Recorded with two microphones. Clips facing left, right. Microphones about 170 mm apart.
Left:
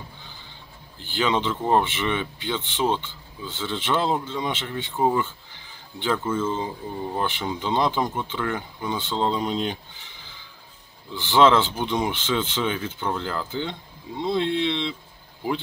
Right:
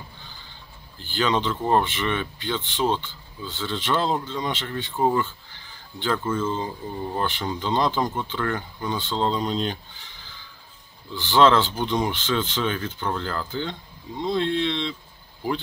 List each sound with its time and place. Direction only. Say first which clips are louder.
0.9 s speech: even; 20° left (ahead or behind)